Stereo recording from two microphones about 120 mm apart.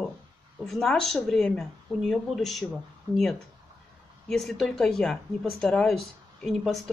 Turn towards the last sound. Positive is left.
turn(degrees=0)  # may be behind; listen again after turning